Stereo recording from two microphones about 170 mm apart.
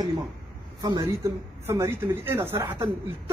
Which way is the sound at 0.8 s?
25° right (ahead or behind).